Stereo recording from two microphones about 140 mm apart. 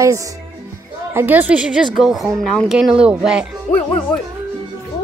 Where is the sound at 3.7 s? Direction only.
60° left (ahead or behind).